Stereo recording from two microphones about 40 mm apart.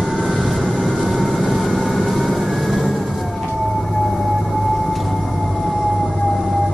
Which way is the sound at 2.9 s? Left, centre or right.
Centre.